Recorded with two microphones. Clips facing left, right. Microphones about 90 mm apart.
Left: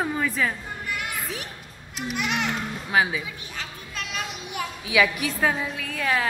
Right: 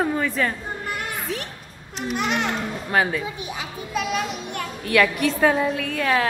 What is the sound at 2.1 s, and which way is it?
Speech, 40° right (ahead or behind).